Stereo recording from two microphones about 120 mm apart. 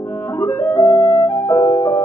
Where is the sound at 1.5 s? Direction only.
20° left (ahead or behind).